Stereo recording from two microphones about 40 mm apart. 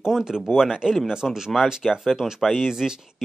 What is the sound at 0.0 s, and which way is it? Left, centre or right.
Speech, centre.